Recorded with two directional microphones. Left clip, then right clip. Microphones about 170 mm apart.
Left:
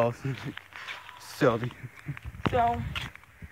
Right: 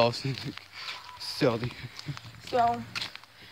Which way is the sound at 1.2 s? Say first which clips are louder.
Left 2 dB; 5° right (ahead or behind).